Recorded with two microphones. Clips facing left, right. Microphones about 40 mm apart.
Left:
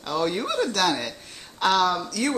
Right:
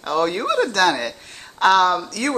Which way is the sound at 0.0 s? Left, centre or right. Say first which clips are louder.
Right 5 dB; right.